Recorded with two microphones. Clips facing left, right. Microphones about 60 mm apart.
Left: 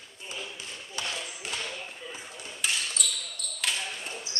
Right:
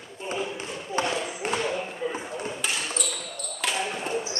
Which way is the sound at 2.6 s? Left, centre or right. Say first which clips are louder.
Left 1 dB; centre.